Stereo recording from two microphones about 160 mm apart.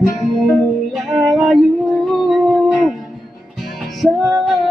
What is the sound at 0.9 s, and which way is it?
Music, centre (ahead or behind).